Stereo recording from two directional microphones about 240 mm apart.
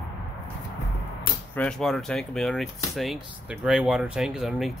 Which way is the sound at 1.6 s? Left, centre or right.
Centre.